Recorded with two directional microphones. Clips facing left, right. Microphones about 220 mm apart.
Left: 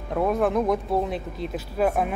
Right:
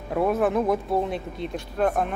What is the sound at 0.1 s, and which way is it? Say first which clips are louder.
Speech: even; 5° right (ahead or behind).